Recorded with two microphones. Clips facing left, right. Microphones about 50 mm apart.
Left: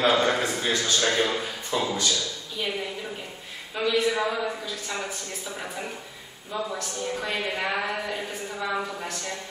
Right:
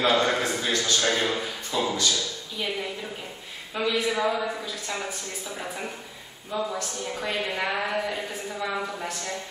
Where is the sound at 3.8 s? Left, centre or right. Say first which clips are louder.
Left 2 dB; centre.